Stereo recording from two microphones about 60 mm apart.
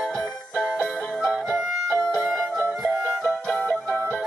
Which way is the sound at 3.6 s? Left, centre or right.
Left.